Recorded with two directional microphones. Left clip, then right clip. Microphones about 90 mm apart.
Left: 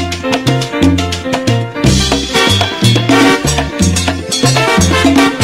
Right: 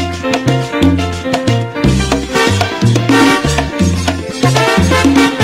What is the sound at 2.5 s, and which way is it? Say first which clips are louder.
Music: left 2 dB; 40° left (ahead or behind).